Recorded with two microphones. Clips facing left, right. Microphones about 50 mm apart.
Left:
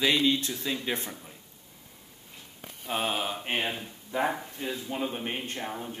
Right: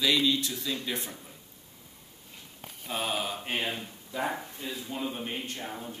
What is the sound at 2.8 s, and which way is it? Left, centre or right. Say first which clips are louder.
Speech: left 2 dB; left.